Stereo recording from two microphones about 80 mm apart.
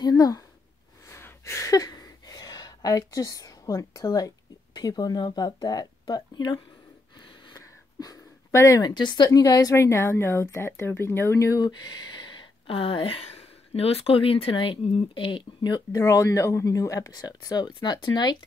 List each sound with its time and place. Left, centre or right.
0.0 s speech: left
1.0 s a sound: left
4.7 s speech: left
7.4 s a sound: left
8.8 s speech: left
9.3 s speech: left
9.8 s speech: left
11.6 s speech: left
14.6 s speech: left
16.0 s speech: left